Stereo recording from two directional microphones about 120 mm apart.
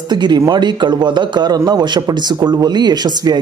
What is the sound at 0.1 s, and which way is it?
A man's voice, 35° right (ahead or behind).